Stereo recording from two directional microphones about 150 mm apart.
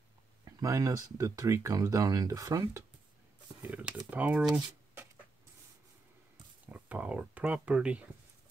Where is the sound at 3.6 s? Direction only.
10° right (ahead or behind).